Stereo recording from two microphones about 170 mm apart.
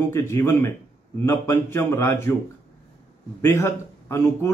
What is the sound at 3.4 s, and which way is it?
A man's voice, 15° left (ahead or behind).